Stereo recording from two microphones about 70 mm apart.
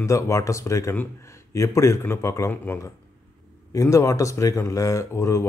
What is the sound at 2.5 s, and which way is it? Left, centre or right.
Speech, left.